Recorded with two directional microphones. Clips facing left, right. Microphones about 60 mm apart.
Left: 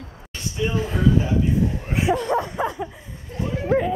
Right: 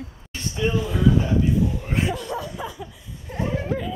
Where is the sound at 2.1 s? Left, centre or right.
Left.